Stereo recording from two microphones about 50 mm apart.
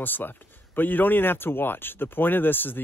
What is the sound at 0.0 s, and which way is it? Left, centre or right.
Speech, left.